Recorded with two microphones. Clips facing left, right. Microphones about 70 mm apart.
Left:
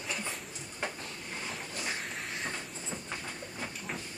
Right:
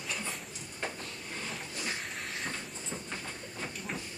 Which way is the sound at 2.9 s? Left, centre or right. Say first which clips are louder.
Right 1 dB; centre.